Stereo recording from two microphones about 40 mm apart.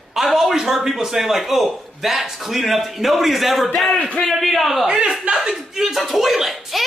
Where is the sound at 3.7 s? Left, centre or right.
Centre.